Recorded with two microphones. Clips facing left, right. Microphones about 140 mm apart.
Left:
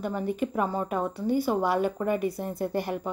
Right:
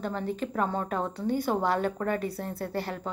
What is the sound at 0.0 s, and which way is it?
A woman's voice, 10° left (ahead or behind).